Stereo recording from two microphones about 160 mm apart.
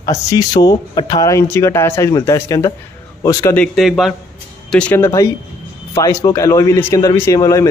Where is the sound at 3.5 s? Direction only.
5° left (ahead or behind).